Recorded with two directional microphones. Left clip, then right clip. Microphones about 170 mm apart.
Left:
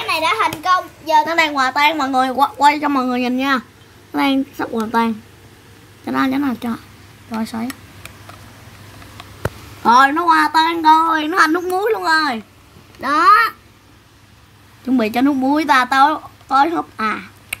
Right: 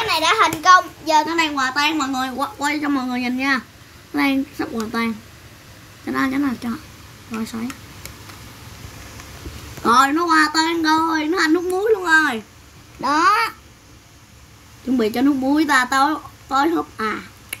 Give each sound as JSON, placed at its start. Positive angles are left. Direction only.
{"t": 0.0, "sound": "a sound", "side_deg": -10}
{"t": 1.2, "sound": "a woman's voice", "side_deg": 75}
{"t": 9.8, "sound": "speech", "side_deg": 25}
{"t": 11.1, "sound": "a woman's voice", "side_deg": 60}
{"t": 13.0, "sound": "a child's voice", "side_deg": 0}
{"t": 15.0, "sound": "speech", "side_deg": 60}